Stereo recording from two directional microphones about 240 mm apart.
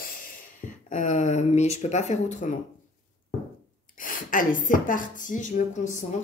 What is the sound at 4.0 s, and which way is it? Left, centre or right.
A woman's voice, left.